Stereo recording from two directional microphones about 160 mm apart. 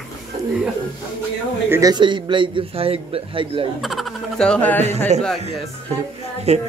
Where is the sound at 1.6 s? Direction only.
15° right (ahead or behind).